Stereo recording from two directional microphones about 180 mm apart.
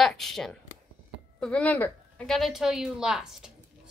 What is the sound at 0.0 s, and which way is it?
A woman's voice, centre (ahead or behind).